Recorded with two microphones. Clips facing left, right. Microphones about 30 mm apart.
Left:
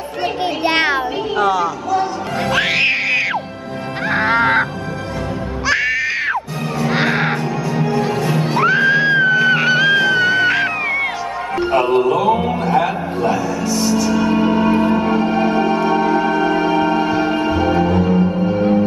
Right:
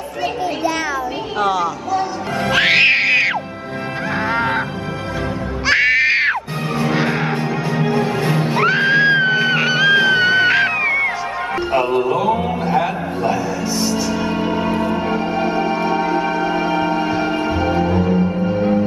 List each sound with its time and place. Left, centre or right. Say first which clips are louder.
1.4 s speech: left 1 dB; centre
2.5 s music: right 3 dB; centre
4.1 s music: left 5 dB; left
5.7 s music: right 4 dB; right
6.9 s music: left 4 dB; left
7.7 s music: even; right
8.5 s music: left 1 dB; centre
9.5 s music: left 1 dB; centre
9.9 s music: right 1 dB; right
12.0 s music: left 2 dB; centre
13.2 s music: left 2 dB; centre